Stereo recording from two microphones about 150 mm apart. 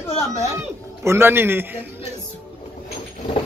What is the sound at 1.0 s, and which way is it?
Speech, 15° right (ahead or behind).